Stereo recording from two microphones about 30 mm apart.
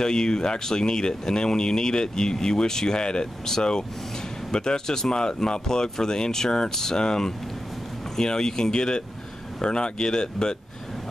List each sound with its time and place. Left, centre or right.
0.0 s speech: left